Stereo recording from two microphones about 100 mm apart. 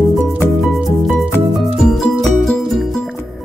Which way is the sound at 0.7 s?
5° right (ahead or behind).